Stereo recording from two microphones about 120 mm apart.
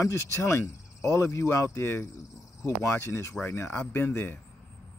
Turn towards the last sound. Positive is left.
turn(degrees=20)  # may be behind; listen again after turning